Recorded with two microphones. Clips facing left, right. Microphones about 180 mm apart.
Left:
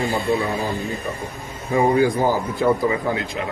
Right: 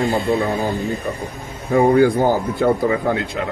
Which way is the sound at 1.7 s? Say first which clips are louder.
Right 4 dB; 60° right (ahead or behind).